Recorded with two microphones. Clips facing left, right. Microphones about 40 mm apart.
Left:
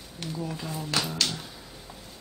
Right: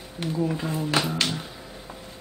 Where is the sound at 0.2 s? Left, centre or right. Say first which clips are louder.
Right 8 dB; right.